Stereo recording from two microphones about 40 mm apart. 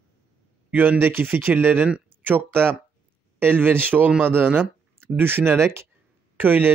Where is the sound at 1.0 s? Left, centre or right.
Right.